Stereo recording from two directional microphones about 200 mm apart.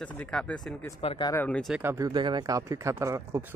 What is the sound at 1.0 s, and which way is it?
Speech, 30° left (ahead or behind).